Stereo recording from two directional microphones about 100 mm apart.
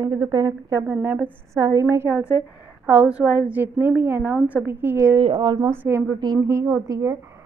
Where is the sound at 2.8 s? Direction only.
15° right (ahead or behind).